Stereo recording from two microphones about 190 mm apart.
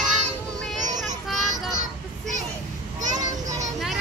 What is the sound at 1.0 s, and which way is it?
Child singing, centre (ahead or behind).